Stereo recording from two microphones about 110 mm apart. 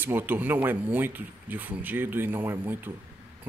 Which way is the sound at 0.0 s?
20° right (ahead or behind).